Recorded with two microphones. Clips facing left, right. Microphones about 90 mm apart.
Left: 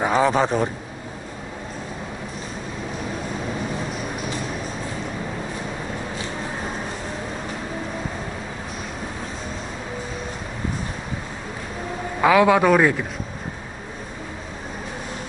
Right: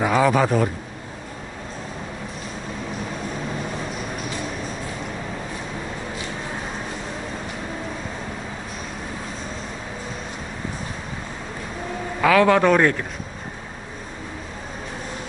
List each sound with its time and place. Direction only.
0.0 s a man's voice: 30° left (ahead or behind)
12.2 s a man's voice: 15° left (ahead or behind)